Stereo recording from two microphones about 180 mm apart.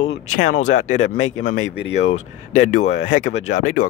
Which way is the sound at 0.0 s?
90° left.